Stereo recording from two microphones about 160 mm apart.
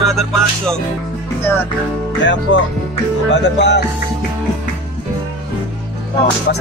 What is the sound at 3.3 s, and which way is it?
Music, 90° left.